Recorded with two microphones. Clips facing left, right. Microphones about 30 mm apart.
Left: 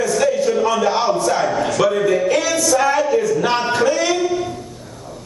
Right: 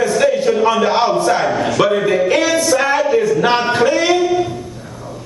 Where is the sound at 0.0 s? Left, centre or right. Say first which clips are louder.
Right 3 dB; right.